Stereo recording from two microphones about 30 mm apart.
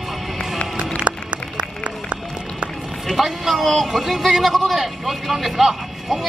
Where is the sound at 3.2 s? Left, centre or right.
Centre.